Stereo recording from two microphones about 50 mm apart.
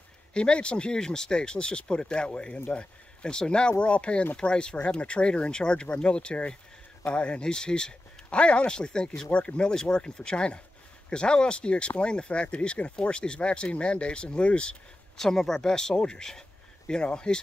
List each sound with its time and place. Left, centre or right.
0.3 s speech: left
15.1 s speech: centre